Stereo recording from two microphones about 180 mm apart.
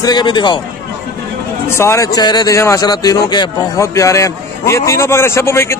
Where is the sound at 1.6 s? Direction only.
15° left (ahead or behind).